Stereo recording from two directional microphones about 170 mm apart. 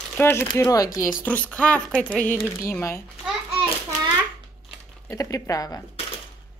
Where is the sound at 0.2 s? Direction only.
15° left (ahead or behind).